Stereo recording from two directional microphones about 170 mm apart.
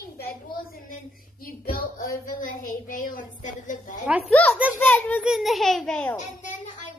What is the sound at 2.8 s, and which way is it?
A woman's voice, 50° left (ahead or behind).